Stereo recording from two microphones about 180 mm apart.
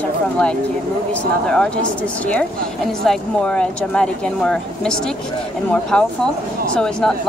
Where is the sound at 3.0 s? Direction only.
5° left (ahead or behind).